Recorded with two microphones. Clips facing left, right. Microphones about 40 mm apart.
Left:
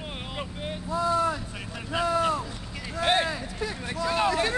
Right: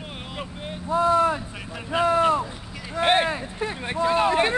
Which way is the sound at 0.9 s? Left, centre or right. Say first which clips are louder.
Right 6 dB; right.